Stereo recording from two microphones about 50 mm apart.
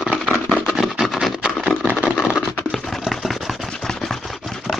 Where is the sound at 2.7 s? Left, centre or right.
Centre.